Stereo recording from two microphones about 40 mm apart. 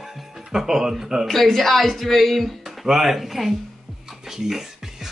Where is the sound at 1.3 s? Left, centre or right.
Centre.